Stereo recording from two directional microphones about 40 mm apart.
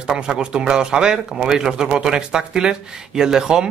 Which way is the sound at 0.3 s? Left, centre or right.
Right.